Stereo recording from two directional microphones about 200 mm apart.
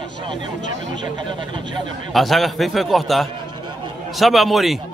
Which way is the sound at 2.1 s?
Centre (ahead or behind).